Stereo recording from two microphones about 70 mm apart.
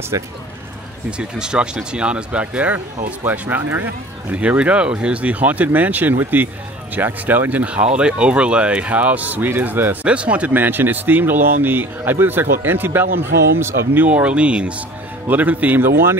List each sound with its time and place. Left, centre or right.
0.1 s speech: right
1.1 s speech: centre; by 9.9 s right
10.0 s speech: centre; by 14.0 s right
14.0 s speech: centre